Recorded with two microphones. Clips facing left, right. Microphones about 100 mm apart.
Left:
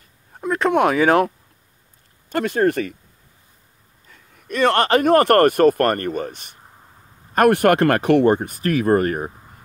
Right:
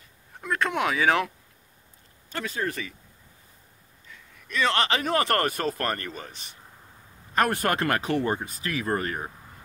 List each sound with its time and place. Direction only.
0.7 s speech: 50° left (ahead or behind)
2.2 s speech: 60° left (ahead or behind)
4.1 s speech: 50° left (ahead or behind)